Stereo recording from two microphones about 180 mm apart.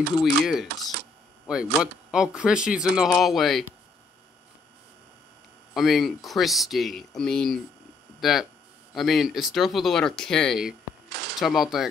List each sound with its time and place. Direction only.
0.2 s speech: centre (ahead or behind)
5.8 s speech: centre (ahead or behind)
11.1 s camera: 70° right (ahead or behind)
11.3 s speech: centre (ahead or behind)